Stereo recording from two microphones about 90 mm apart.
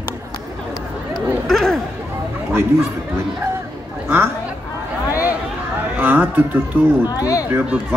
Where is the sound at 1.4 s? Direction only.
5° left (ahead or behind).